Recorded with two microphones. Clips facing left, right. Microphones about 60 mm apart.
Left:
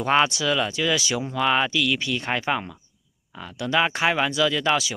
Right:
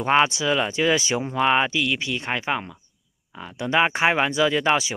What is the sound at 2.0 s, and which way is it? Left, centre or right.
Speech, centre.